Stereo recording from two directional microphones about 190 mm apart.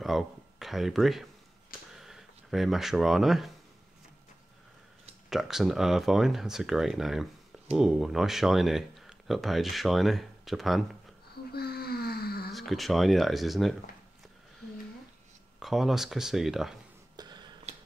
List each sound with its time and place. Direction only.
0.0 s speech: centre (ahead or behind)
5.3 s speech: centre (ahead or behind)
11.5 s wail: 55° left (ahead or behind)
12.4 s speech: centre (ahead or behind)
15.6 s speech: centre (ahead or behind)
17.2 s finger snapping: 25° right (ahead or behind)
17.7 s finger snapping: 35° right (ahead or behind)